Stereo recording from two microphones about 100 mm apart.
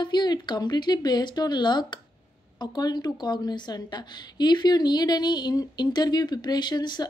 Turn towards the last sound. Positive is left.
turn(degrees=50)  # may be behind; listen again after turning